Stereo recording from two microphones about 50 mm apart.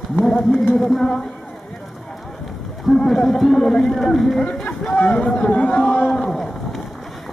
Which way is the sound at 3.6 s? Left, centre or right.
Centre.